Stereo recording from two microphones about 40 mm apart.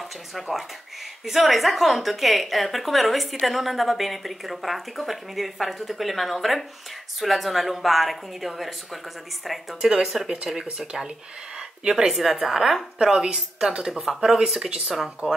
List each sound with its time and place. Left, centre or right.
0.3 s speech: centre
9.8 s a woman's voice: centre
11.5 s a sound: right
12.1 s a woman's voice: centre
14.4 s a woman's voice: right